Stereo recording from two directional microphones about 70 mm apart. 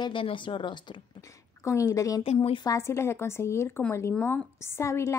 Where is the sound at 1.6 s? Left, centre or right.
Left.